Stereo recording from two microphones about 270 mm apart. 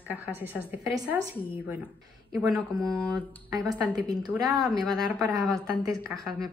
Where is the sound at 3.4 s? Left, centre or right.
Centre.